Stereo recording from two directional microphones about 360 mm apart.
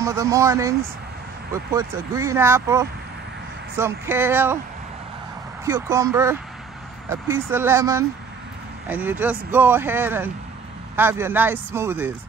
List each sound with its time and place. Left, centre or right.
0.0 s speech: centre
5.7 s speech: centre